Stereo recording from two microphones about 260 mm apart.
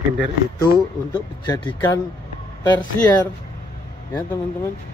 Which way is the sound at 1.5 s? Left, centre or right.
Centre.